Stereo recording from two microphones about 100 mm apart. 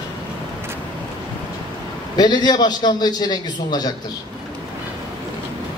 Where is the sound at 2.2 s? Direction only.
45° left (ahead or behind).